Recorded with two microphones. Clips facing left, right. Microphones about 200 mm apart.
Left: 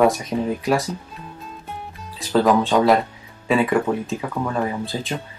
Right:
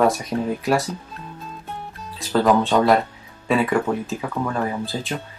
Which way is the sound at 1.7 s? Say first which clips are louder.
Even; centre (ahead or behind).